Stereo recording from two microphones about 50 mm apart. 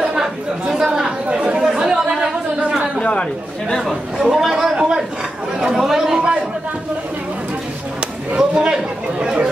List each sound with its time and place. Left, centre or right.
0.0 s chatter: centre
3.0 s chatter: left
4.2 s a man's voice: centre
5.6 s chatter: centre
8.3 s a sound: right
8.6 s speech: centre